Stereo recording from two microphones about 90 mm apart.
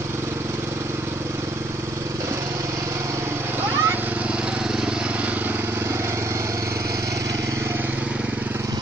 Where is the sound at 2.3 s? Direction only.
35° right (ahead or behind); by 8.6 s 15° right (ahead or behind).